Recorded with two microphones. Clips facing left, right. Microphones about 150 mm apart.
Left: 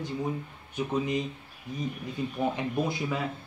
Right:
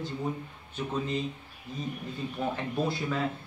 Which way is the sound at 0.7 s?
15° left (ahead or behind).